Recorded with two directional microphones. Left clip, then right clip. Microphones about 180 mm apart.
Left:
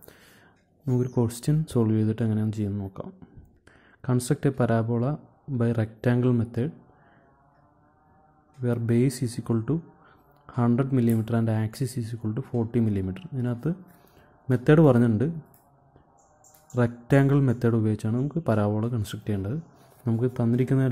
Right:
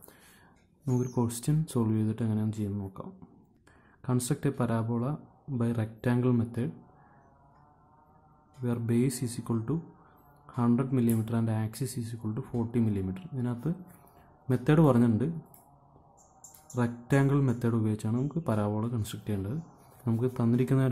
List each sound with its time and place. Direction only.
0.8 s speech: 15° left (ahead or behind)
8.6 s speech: 20° left (ahead or behind)
16.7 s speech: 25° left (ahead or behind)